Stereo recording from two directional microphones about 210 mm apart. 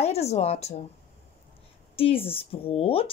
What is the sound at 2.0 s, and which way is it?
A woman's voice, 25° left (ahead or behind).